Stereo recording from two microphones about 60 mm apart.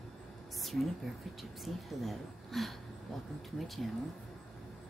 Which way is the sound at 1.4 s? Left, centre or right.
Centre.